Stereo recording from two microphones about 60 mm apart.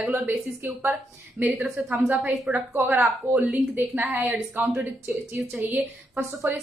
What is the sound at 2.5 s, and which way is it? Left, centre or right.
Speech, right.